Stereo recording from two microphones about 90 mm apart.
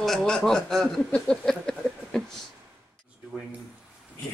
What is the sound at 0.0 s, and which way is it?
Speech, 5° left (ahead or behind).